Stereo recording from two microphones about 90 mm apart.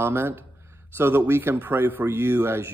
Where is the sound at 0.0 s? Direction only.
25° right (ahead or behind).